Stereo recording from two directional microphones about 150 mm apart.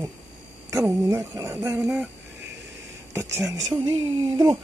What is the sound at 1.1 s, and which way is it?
Speech, 20° right (ahead or behind).